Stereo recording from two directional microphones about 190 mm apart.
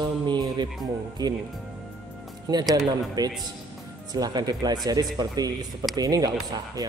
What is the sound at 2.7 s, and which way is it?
Speech, 20° right (ahead or behind).